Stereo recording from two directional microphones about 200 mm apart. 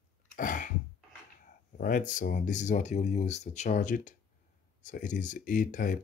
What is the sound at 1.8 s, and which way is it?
Speech, 45° left (ahead or behind).